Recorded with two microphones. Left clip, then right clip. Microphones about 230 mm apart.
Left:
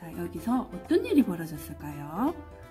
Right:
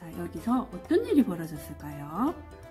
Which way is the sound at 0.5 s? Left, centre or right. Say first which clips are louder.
Even; centre.